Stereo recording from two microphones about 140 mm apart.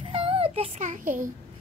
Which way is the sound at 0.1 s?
40° right (ahead or behind).